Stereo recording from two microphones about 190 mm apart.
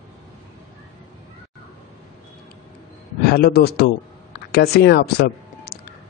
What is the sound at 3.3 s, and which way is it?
A man's voice, 55° left (ahead or behind).